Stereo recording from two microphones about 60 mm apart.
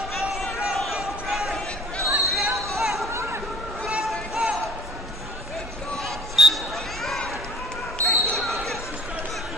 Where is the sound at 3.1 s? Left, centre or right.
Right.